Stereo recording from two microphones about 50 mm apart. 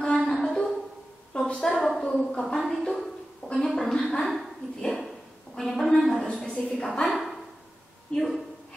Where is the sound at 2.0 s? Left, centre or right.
Centre.